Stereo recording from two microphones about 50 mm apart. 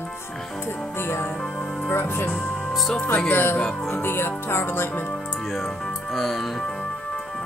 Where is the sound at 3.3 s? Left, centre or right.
Left.